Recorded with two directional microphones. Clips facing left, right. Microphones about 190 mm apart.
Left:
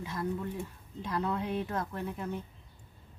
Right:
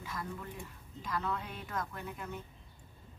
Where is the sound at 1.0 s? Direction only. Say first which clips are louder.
Left 5 dB; 30° left (ahead or behind).